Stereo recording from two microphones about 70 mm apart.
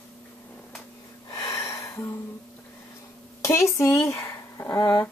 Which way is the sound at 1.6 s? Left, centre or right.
Left.